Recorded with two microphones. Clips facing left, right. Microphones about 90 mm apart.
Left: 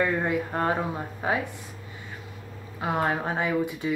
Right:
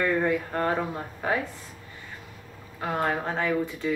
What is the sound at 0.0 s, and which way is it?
Speech, 15° left (ahead or behind).